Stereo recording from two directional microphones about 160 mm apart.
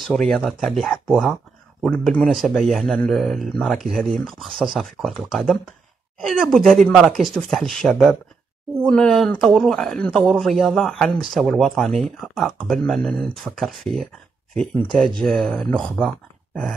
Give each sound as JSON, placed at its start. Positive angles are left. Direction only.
{"t": 0.0, "sound": "speech", "side_deg": 5}